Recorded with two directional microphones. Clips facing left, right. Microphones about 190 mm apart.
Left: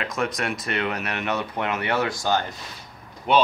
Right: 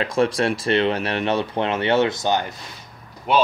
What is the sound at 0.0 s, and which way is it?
Speech, 30° right (ahead or behind).